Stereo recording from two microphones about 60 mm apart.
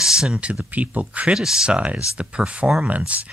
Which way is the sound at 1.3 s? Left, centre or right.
Centre.